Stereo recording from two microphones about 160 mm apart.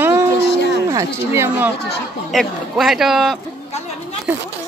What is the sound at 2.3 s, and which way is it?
Speech, centre (ahead or behind).